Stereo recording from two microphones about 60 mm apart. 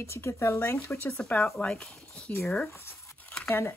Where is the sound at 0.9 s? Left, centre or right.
Left.